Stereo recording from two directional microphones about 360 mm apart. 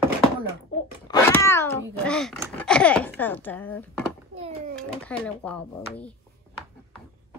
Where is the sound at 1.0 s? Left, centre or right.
Centre.